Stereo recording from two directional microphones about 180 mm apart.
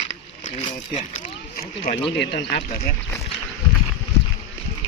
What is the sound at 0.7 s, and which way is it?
Speech, 30° left (ahead or behind).